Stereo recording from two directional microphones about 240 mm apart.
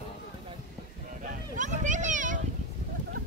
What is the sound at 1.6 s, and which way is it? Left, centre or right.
Children playing, right.